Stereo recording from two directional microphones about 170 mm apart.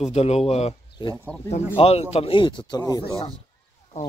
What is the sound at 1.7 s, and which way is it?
Speech, 35° left (ahead or behind).